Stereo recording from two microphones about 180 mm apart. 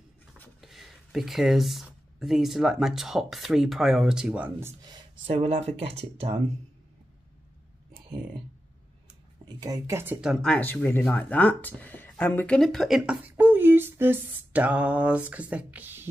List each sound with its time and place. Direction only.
0.6 s a sound: centre (ahead or behind)
2.1 s speech: centre (ahead or behind); by 6.4 s 35° right (ahead or behind)
9.6 s speech: 20° right (ahead or behind)
10.3 s speech: 5° left (ahead or behind); by 16.1 s 10° right (ahead or behind)